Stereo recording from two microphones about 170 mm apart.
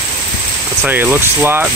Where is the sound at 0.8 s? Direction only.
10° right (ahead or behind).